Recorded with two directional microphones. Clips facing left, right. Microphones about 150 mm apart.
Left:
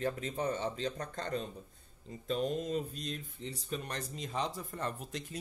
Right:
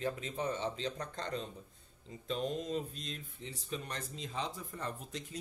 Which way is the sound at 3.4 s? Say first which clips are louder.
Left 2 dB; 55° left (ahead or behind).